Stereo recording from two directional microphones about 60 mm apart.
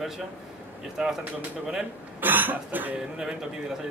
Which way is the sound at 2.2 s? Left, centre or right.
Right.